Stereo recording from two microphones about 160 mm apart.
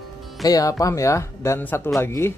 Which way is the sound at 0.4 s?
20° left (ahead or behind).